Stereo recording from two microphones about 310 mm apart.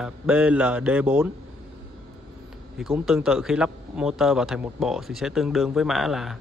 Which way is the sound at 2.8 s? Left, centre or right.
Centre.